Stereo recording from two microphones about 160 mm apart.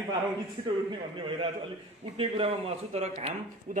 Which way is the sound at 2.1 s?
35° right (ahead or behind).